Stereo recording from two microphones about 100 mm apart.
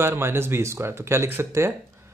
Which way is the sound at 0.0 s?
25° right (ahead or behind).